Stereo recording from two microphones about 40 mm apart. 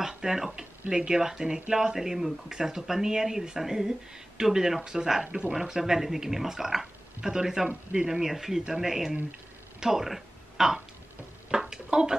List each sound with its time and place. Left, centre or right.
0.2 s speech: centre
7.6 s speech: right
8.2 s speech: centre
11.7 s a sound: centre